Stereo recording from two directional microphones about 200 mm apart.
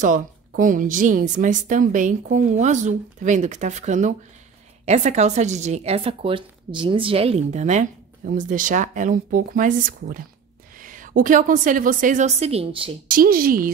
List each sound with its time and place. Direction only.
0.0 s speech: 40° right (ahead or behind)
13.1 s speech: 45° right (ahead or behind)